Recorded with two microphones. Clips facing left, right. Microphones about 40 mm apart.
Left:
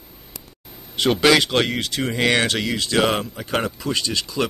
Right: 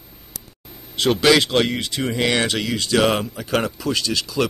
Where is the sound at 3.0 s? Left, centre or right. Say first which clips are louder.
Right 1 dB; centre.